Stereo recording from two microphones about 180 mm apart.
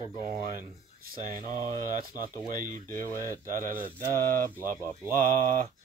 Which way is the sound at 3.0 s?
15° left (ahead or behind).